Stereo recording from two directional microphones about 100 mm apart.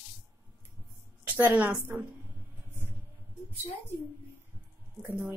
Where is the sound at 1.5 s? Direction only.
10° right (ahead or behind).